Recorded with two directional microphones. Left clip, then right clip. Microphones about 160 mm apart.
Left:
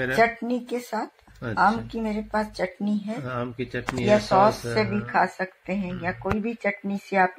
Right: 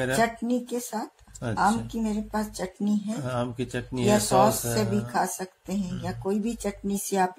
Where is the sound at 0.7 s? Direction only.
20° left (ahead or behind).